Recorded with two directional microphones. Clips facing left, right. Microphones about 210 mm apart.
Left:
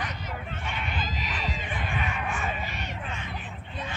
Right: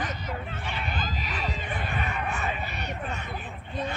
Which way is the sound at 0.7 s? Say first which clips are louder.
Even; 35° right (ahead or behind).